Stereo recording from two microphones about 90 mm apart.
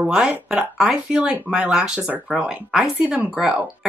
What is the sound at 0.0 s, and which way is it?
Speech, 10° right (ahead or behind).